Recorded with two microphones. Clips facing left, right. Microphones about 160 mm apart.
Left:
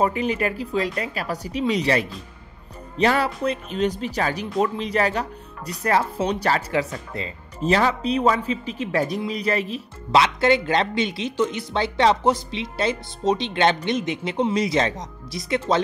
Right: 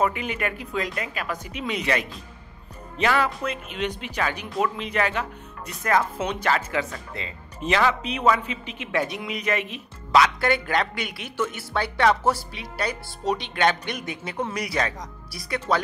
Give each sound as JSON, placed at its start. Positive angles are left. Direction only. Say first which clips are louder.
{"t": 0.0, "sound": "speech", "louder": "left 3 dB", "side_deg": 35}